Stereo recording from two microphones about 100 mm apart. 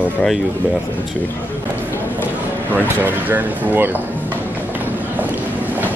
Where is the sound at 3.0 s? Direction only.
20° right (ahead or behind).